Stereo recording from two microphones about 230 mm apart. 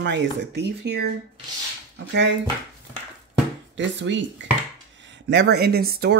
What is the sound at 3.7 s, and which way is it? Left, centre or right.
Speech, right.